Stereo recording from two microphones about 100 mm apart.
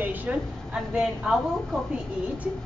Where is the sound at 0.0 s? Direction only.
15° right (ahead or behind).